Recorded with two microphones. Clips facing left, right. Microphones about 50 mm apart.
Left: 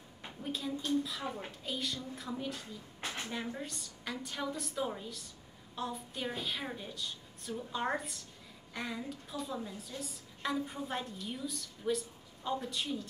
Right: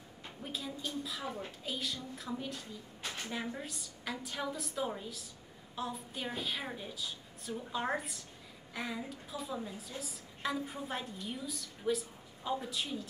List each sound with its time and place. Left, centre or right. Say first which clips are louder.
0.4 s a woman's voice: left 3 dB; centre
3.0 s a sound: left 2 dB; left
3.3 s a woman's voice: even; centre